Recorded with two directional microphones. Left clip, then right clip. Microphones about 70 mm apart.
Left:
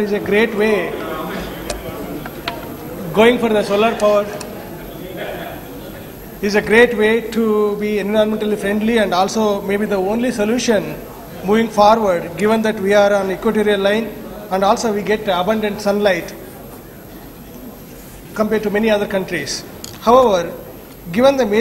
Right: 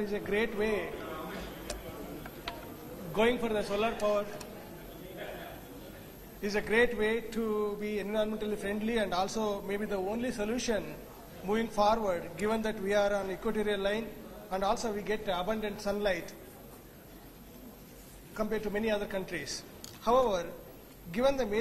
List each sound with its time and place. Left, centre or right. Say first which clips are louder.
0.0 s a sound: left 16 dB; left
6.4 s a man's voice: left 16 dB; left
18.3 s a man's voice: left 16 dB; left